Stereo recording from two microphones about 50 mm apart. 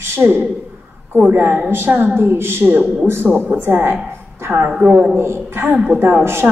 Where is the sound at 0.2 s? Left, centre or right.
Right.